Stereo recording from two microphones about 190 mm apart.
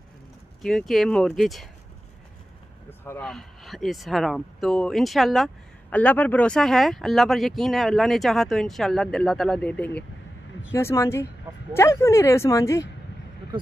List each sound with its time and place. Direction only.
0.6 s speech: centre (ahead or behind)
2.9 s speech: 10° left (ahead or behind)